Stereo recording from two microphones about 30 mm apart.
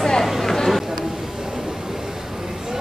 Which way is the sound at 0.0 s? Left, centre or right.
Centre.